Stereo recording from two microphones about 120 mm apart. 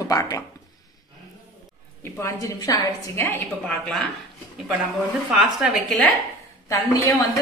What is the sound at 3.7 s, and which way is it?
Speech, 5° left (ahead or behind).